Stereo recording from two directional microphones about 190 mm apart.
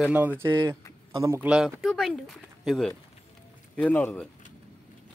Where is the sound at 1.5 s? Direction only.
Centre (ahead or behind).